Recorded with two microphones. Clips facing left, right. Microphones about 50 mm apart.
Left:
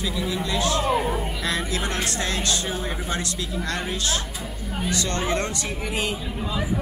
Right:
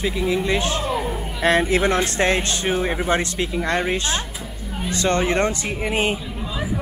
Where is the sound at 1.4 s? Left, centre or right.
Right.